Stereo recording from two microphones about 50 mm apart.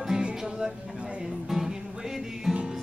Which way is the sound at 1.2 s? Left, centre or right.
Centre.